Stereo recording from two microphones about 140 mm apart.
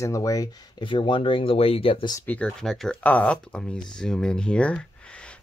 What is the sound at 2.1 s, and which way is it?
Speech, 10° left (ahead or behind).